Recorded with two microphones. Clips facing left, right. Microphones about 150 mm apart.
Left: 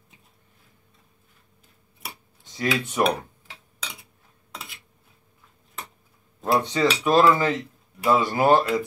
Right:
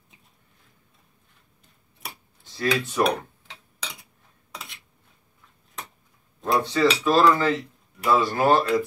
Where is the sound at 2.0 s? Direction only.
Centre (ahead or behind).